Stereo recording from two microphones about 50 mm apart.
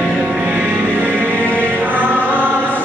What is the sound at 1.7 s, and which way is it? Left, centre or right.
Music, right.